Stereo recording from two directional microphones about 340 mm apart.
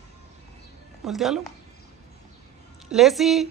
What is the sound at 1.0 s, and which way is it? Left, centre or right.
Speech, centre.